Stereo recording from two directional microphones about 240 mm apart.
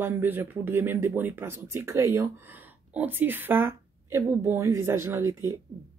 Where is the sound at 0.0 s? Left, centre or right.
Centre.